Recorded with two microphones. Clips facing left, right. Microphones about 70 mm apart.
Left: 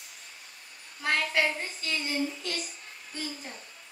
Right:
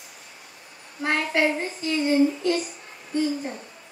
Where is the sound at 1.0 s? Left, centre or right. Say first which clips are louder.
Right 4 dB; right.